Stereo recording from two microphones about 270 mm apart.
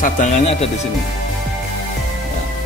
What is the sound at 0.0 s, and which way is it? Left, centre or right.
Speech, left.